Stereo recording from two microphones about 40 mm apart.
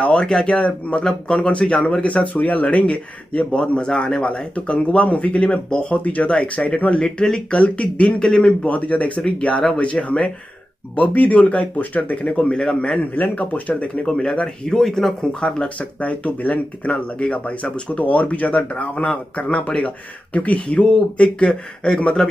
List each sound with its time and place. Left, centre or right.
0.0 s speech: left
0.5 s speech: left
2.0 s speech: left
4.6 s speech: left
8.2 s speech: centre
8.6 s speech: left
13.1 s speech: left
14.0 s speech: centre
14.7 s speech: centre
15.4 s speech: left
16.0 s speech: left
17.9 s speech: left; by 22.3 s centre